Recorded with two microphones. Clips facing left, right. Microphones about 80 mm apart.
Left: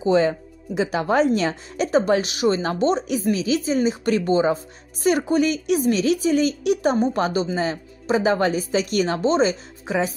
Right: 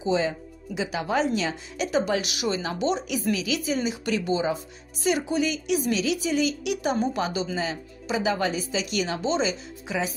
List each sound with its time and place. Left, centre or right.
0.0 s speech: left